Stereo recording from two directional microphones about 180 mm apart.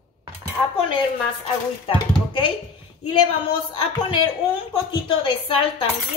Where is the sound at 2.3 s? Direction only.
25° left (ahead or behind).